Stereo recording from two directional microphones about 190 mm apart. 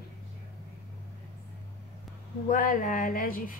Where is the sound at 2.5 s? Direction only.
45° left (ahead or behind).